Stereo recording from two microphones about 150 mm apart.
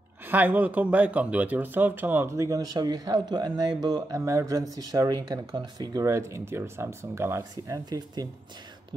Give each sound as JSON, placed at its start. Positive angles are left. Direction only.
{"t": 0.3, "sound": "speech", "side_deg": -10}